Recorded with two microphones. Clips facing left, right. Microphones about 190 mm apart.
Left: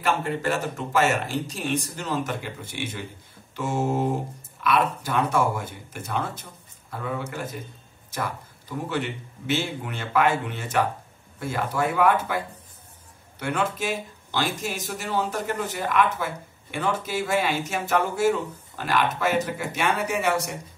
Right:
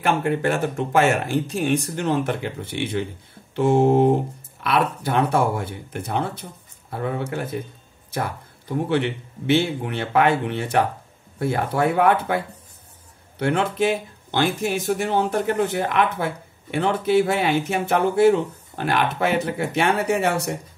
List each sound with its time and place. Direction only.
0.0 s speech: 60° right (ahead or behind)
13.4 s speech: 60° right (ahead or behind)